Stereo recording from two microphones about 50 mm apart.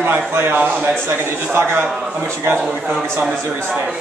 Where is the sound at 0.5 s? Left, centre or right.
Right.